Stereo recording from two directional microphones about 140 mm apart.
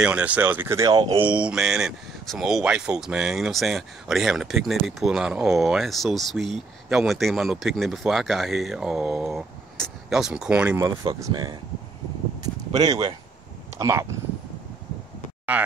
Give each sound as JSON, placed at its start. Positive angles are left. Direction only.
{"t": 0.0, "sound": "speech", "side_deg": -10}
{"t": 1.2, "sound": "speech", "side_deg": -10}
{"t": 10.8, "sound": "speech", "side_deg": -25}
{"t": 12.4, "sound": "a sound", "side_deg": -30}
{"t": 13.7, "sound": "speech", "side_deg": -20}
{"t": 15.5, "sound": "speech", "side_deg": -10}